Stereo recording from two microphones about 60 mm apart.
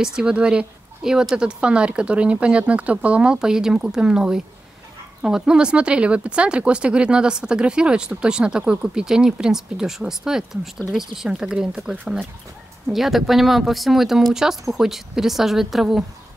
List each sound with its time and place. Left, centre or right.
0.0 s speech: centre
12.9 s speech: centre